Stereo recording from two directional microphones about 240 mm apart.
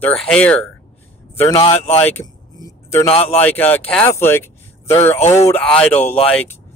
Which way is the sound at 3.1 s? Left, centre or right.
Left.